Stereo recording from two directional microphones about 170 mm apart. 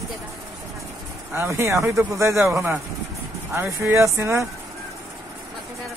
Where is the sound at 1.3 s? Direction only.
15° right (ahead or behind).